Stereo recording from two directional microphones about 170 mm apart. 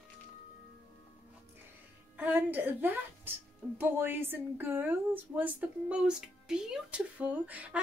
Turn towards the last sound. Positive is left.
turn(degrees=-10)  # may be behind; listen again after turning